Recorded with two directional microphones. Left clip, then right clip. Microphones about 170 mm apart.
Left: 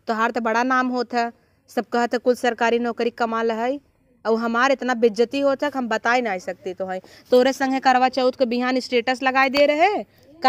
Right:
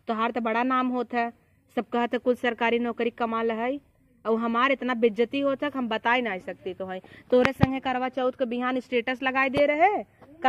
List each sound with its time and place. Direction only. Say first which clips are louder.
0.0 s speech: left 5 dB; 25° left (ahead or behind)
9.7 s speech: left 3 dB; 45° left (ahead or behind)